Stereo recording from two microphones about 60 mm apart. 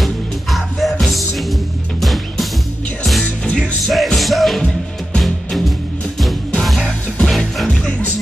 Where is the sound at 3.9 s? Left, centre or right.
Centre.